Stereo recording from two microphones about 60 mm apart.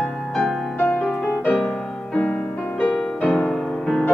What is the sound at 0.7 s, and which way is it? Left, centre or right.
Music, left.